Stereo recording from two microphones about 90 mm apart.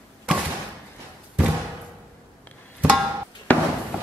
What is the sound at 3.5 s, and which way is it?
Fireworks, 15° left (ahead or behind).